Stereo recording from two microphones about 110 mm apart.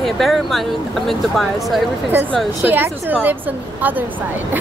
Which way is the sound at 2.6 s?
20° right (ahead or behind).